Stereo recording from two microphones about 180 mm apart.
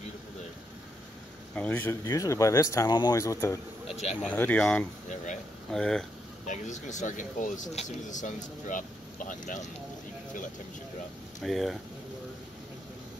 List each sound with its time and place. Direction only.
1.5 s speech: 10° left (ahead or behind)
3.8 s speech: 35° left (ahead or behind)
4.2 s speech: 5° left (ahead or behind)
6.4 s speech: 40° left (ahead or behind)
11.4 s speech: centre (ahead or behind)